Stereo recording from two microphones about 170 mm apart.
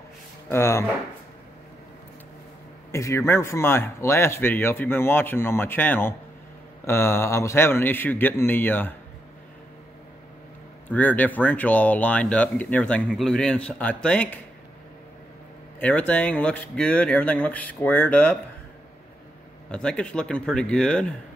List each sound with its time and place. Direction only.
0.5 s speech: 15° left (ahead or behind)
2.9 s speech: 15° left (ahead or behind)
10.9 s speech: 10° left (ahead or behind)
15.8 s speech: 10° left (ahead or behind)
19.7 s speech: 5° left (ahead or behind)